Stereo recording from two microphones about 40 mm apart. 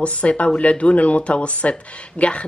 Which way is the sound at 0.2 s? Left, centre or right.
Left.